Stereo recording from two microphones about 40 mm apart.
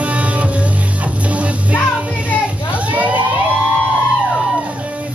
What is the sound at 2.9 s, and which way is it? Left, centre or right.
Vehicle, right.